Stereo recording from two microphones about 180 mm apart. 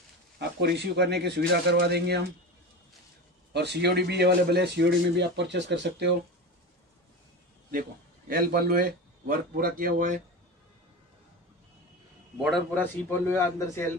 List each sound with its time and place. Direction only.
0.4 s speech: 65° right (ahead or behind)
3.5 s speech: 70° right (ahead or behind)
8.3 s a man's voice: 55° right (ahead or behind)
12.4 s a man's voice: centre (ahead or behind)
13.3 s a man's voice: 15° left (ahead or behind)